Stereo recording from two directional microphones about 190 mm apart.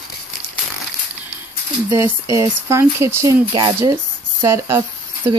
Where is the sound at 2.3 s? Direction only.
15° right (ahead or behind).